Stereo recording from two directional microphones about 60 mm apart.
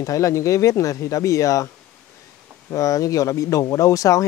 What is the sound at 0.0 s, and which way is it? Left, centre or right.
Speech, left.